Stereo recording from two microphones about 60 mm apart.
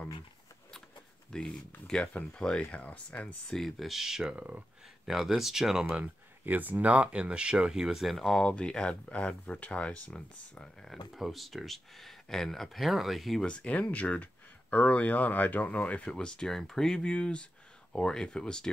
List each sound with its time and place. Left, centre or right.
1.3 s speech: centre
2.6 s speech: left
3.4 s speech: centre
4.4 s speech: right
5.0 s speech: centre
5.9 s speech: right; by 8.2 s centre
8.2 s speech: centre
10.9 s speech: centre
13.4 s speech: centre